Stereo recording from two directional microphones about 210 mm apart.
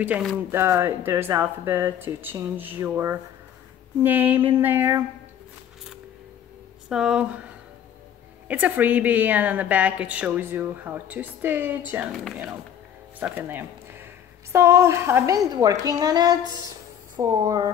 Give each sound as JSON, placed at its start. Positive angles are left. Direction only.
{"t": 0.0, "sound": "a woman's voice", "side_deg": -5}
{"t": 6.9, "sound": "speech", "side_deg": -5}
{"t": 8.5, "sound": "a woman's voice", "side_deg": -10}
{"t": 13.2, "sound": "a woman's voice", "side_deg": -10}